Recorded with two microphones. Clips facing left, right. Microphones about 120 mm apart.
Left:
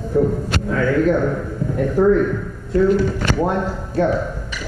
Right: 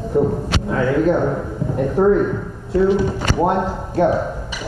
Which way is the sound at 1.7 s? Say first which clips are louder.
Even; 5° right (ahead or behind).